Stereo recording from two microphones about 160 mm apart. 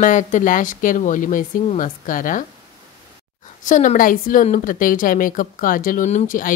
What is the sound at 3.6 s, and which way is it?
A woman's voice, 55° left (ahead or behind).